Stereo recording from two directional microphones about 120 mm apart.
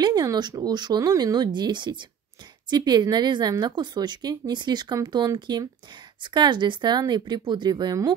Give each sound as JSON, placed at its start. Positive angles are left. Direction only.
{"t": 0.0, "sound": "a woman's voice", "side_deg": -35}